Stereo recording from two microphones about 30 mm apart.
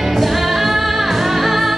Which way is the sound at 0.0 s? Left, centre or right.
Centre.